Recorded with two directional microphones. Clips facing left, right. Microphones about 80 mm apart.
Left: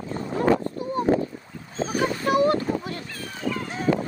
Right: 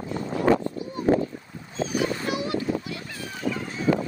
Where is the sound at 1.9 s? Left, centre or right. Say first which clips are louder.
Left 4 dB; left.